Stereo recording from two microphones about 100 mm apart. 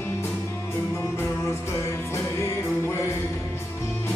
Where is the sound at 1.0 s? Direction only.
25° left (ahead or behind).